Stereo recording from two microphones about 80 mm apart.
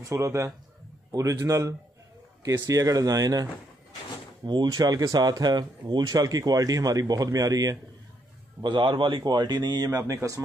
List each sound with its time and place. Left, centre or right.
0.0 s a man's voice: right
4.6 s speech: right
8.6 s speech: right